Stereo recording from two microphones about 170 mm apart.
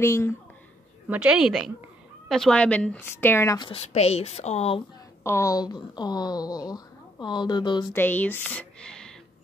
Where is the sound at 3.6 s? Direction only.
35° left (ahead or behind).